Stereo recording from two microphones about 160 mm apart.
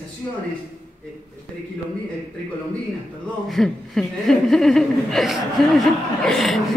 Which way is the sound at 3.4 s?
Centre (ahead or behind).